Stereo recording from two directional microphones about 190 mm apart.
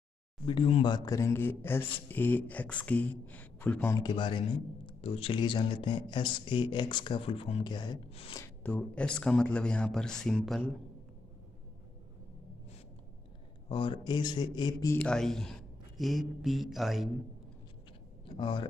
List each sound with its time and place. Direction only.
0.5 s speech: 30° left (ahead or behind)
8.4 s speech: 10° left (ahead or behind)
13.7 s speech: 25° left (ahead or behind)
15.0 s speech: 5° left (ahead or behind)
18.3 s speech: 25° left (ahead or behind)